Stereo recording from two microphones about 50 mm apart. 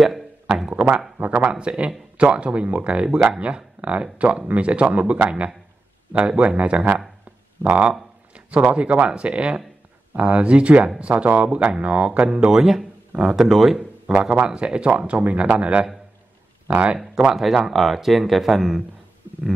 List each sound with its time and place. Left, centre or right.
0.0 s a sound: centre
1.2 s speech: right
1.5 s speech: right
12.4 s a man's voice: centre; by 16.9 s right
17.3 s speech: centre